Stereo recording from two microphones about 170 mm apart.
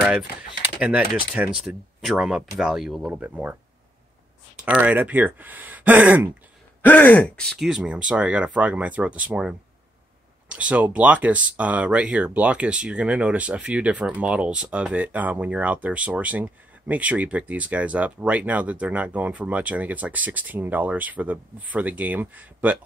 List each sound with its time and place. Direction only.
0.7 s speech: 10° right (ahead or behind)
4.6 s speech: 5° right (ahead or behind)
6.8 s speech: 10° left (ahead or behind); by 22.8 s 10° right (ahead or behind)